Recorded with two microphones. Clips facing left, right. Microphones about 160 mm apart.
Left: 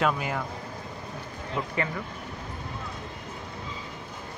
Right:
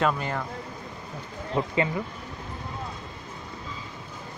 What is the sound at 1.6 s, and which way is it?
Speech, 30° right (ahead or behind).